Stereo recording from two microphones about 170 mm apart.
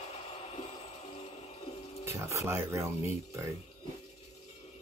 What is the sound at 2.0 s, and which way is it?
Speech, 15° right (ahead or behind).